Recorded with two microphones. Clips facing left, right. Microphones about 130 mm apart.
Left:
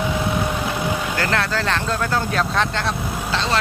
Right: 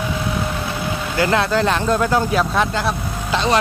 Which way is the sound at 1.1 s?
15° right (ahead or behind).